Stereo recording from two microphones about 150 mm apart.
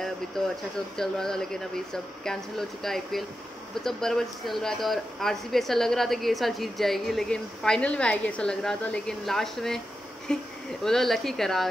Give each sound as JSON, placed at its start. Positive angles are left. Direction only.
{"t": 0.9, "sound": "speech", "side_deg": 5}